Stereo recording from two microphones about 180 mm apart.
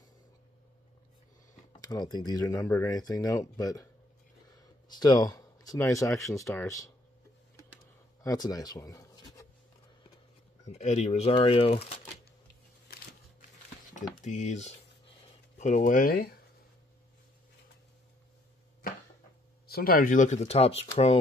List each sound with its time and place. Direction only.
1.9 s speech: 20° left (ahead or behind)
4.8 s speech: 20° left (ahead or behind)
8.2 s a sound: 20° left (ahead or behind)
10.7 s speech: 35° left (ahead or behind)
14.2 s speech: 40° left (ahead or behind)
19.7 s speech: 55° left (ahead or behind); by 20.9 s 35° left (ahead or behind)